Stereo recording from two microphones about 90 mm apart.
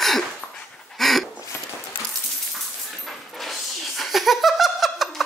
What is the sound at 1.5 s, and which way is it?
Clip-clop, 25° left (ahead or behind).